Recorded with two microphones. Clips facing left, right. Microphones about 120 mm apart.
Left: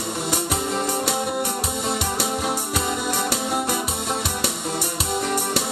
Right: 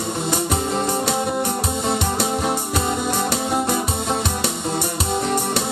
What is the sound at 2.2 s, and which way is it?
Music, 35° right (ahead or behind).